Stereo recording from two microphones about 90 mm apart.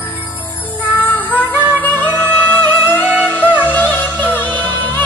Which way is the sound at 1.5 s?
20° right (ahead or behind).